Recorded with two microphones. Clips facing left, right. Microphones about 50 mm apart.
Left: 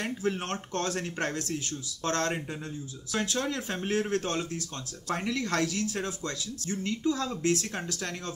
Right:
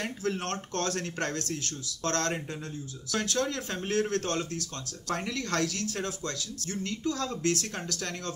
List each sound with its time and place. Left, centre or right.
0.2 s speech: left